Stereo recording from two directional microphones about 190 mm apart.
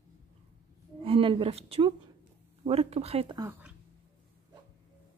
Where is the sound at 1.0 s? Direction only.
30° right (ahead or behind).